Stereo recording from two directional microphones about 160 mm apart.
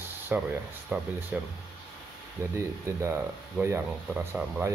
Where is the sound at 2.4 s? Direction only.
20° right (ahead or behind).